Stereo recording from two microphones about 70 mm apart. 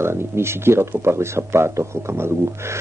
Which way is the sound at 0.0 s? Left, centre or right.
Right.